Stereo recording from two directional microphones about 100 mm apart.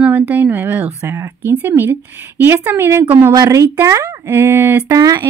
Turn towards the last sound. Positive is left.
turn(degrees=-35)  # may be behind; listen again after turning